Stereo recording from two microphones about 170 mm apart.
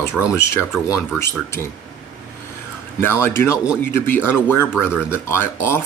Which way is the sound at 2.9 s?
15° left (ahead or behind).